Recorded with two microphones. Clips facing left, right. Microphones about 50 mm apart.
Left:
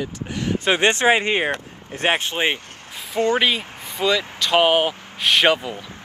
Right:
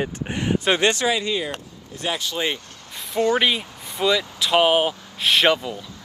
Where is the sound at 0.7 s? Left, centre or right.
Left.